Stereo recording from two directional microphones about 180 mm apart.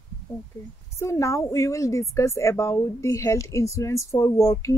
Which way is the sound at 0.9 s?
15° left (ahead or behind).